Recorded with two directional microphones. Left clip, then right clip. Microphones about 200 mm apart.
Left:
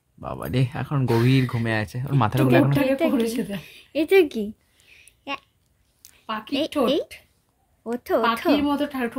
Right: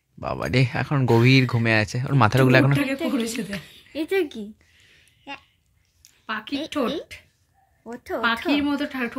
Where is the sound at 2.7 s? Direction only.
35° left (ahead or behind).